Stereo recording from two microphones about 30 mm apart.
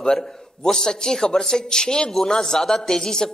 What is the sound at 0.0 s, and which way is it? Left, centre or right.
Speech, centre.